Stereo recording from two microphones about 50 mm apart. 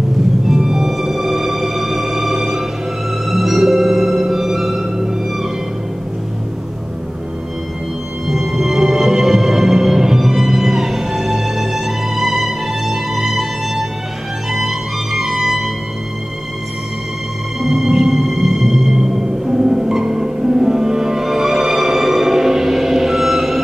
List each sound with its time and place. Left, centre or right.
0.5 s music: centre
8.3 s music: centre
17.6 s music: centre